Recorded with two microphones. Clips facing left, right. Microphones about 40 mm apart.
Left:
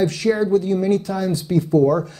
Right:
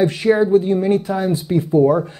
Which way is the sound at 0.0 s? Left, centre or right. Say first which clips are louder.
Right 4 dB; right.